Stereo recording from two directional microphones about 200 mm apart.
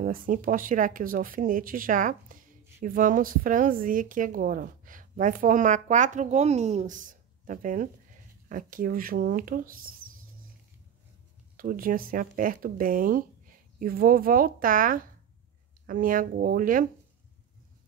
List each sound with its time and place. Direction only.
0.0 s a woman's voice: 45° right (ahead or behind)
11.5 s speech: 45° right (ahead or behind)